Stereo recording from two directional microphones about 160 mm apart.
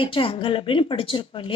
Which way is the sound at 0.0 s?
35° left (ahead or behind).